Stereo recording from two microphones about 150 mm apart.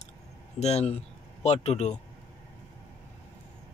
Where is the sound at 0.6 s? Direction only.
45° left (ahead or behind).